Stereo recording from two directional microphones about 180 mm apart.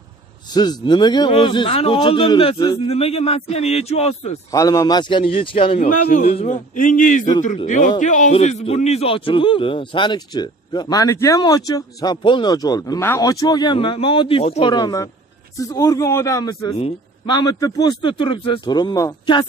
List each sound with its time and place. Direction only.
0.5 s a man's voice: 25° left (ahead or behind)
4.5 s a man's voice: 20° left (ahead or behind)
5.8 s a man's voice: 45° left (ahead or behind)
14.7 s a man's voice: 20° left (ahead or behind)